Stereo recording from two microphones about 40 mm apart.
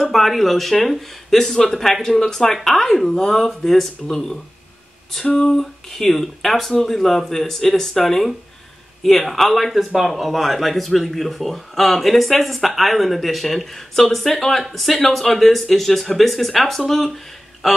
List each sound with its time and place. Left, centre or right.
0.0 s speech: centre